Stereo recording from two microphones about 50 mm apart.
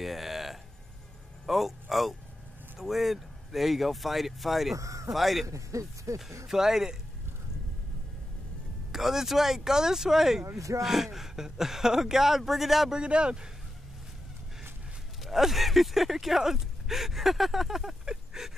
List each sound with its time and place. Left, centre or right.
0.0 s a sound: centre
1.4 s a man's voice: centre
4.7 s speech: right
5.1 s speech: centre
5.5 s speech: right
6.4 s speech: centre
8.9 s speech: centre
12.9 s speech: centre
15.2 s speech: centre
18.0 s a sound: centre